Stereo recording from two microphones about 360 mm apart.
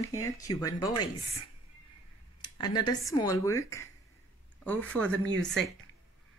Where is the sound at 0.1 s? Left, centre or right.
Centre.